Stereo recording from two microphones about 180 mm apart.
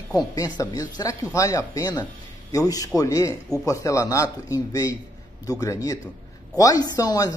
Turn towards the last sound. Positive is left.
turn(degrees=20)  # may be behind; listen again after turning